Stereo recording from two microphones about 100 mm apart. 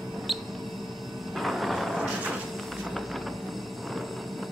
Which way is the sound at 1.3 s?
Centre (ahead or behind).